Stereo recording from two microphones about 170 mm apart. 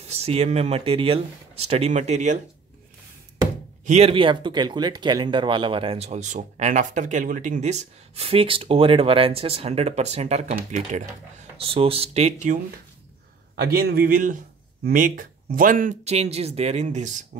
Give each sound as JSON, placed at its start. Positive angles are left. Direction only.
{"t": 0.0, "sound": "speech", "side_deg": -40}
{"t": 3.8, "sound": "speech", "side_deg": -40}
{"t": 11.5, "sound": "speech", "side_deg": -35}
{"t": 13.6, "sound": "a man's voice", "side_deg": -65}